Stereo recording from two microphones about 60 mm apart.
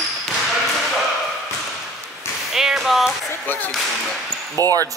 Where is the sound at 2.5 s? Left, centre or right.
Centre.